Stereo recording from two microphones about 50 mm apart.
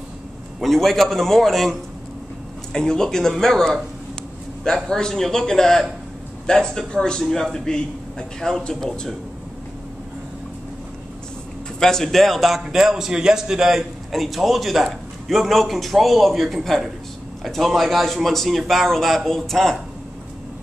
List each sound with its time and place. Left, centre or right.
0.6 s a man's voice: centre
4.8 s a man's voice: centre
11.8 s a man's voice: centre